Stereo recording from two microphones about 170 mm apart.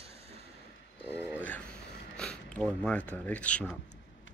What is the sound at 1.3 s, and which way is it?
Dog, 10° left (ahead or behind).